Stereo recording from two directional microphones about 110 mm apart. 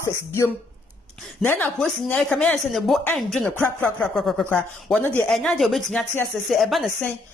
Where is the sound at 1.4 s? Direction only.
15° left (ahead or behind).